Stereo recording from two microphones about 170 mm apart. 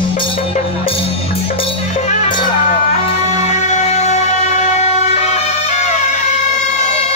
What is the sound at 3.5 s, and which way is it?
Music, 45° left (ahead or behind).